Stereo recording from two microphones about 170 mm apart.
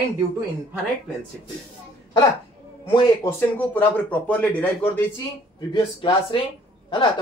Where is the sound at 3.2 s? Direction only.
10° left (ahead or behind).